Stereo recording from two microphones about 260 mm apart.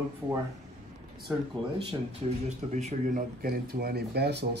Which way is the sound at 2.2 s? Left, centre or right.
Right.